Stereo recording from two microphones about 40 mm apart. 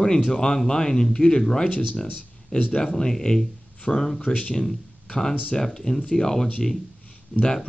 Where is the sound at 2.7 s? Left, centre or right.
Centre.